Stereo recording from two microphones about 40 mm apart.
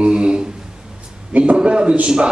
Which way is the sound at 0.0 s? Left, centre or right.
Right.